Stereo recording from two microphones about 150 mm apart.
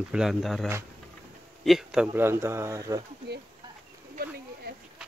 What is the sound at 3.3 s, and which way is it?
Speech, 90° right.